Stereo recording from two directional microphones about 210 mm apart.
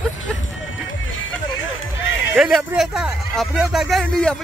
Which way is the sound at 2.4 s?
Centre (ahead or behind).